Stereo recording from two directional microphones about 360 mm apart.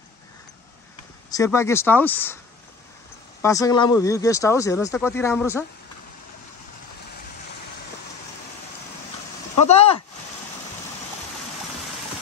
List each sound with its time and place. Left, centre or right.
1.3 s speech: centre
3.4 s speech: centre
9.7 s a sound: centre